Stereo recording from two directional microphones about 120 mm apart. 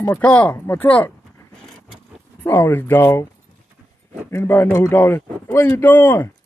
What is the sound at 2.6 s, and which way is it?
Speech, 15° left (ahead or behind).